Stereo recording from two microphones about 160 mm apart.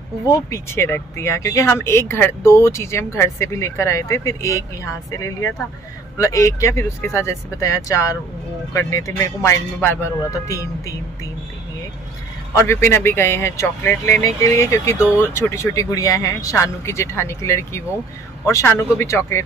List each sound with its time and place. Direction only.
0.3 s speech: 15° left (ahead or behind)
12.5 s speech: 15° left (ahead or behind)